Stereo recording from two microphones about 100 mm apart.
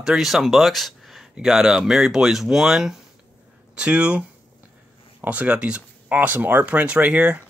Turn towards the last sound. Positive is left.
turn(degrees=-15)  # may be behind; listen again after turning